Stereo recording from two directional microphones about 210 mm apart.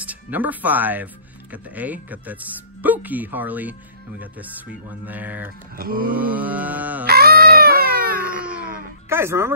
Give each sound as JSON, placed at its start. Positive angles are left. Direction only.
{"t": 0.0, "sound": "speech", "side_deg": -10}
{"t": 5.8, "sound": "mantra", "side_deg": -45}
{"t": 6.1, "sound": "speech", "side_deg": -10}
{"t": 7.1, "sound": "music", "side_deg": -50}
{"t": 9.1, "sound": "speech", "side_deg": -10}